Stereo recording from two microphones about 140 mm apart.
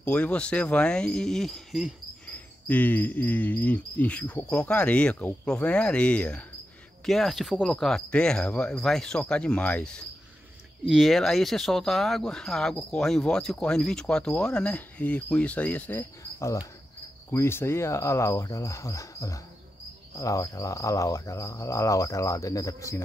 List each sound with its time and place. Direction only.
0.0 s cricket: 10° left (ahead or behind)
2.2 s cricket: 10° left (ahead or behind)
7.1 s speech: centre (ahead or behind)
10.9 s speech: centre (ahead or behind); by 16.6 s 20° left (ahead or behind)
17.3 s cricket: 20° left (ahead or behind)